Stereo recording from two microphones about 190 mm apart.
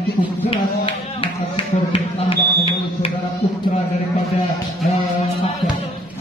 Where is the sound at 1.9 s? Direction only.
30° left (ahead or behind).